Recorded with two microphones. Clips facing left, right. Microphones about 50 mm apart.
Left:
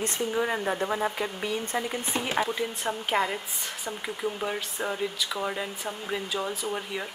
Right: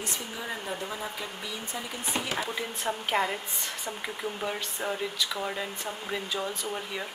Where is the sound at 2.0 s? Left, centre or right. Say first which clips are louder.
Right 1 dB; centre.